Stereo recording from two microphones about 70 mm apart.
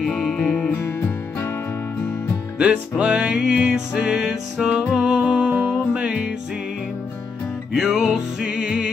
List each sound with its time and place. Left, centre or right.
0.0 s music: centre
0.7 s music: left
2.6 s music: centre
7.7 s music: centre